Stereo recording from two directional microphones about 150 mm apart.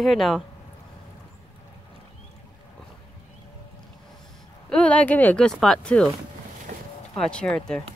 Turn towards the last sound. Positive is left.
turn(degrees=5)  # may be behind; listen again after turning